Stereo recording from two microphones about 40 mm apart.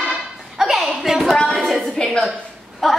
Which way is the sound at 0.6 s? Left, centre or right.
Centre.